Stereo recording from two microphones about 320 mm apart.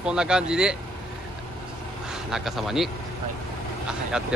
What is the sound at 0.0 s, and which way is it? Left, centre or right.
Speech, centre.